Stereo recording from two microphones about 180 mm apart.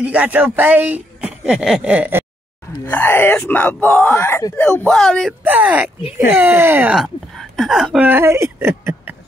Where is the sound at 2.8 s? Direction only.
10° left (ahead or behind).